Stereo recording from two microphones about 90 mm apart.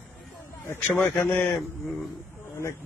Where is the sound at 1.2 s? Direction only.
20° left (ahead or behind).